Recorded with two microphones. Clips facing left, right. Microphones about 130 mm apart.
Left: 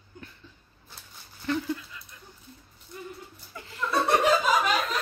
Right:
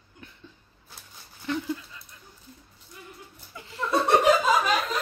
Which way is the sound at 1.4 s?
15° right (ahead or behind).